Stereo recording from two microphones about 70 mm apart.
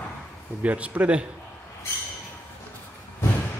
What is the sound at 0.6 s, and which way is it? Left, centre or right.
Speech, centre.